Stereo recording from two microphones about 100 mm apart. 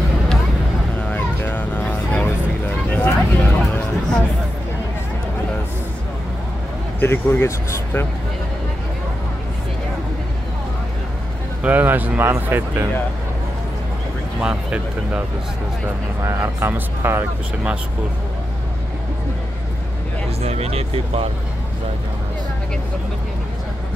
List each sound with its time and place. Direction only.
0.9 s vehicle: 20° left (ahead or behind)
7.0 s speech: 20° left (ahead or behind)
11.6 s speech: 20° right (ahead or behind)
14.4 s speech: 10° right (ahead or behind)
16.3 s speech: 25° right (ahead or behind)
20.4 s speech: 90° right